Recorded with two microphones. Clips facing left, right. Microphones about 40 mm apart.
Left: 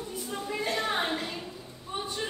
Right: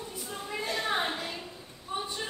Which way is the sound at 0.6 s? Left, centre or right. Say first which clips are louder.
Left 2 dB; left.